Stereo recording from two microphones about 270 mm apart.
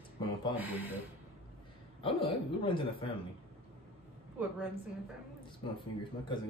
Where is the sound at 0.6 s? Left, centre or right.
Centre.